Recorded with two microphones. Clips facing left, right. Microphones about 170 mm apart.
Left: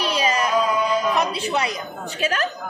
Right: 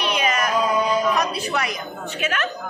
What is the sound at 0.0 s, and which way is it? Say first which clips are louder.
Music: left 1 dB; 35° left (ahead or behind).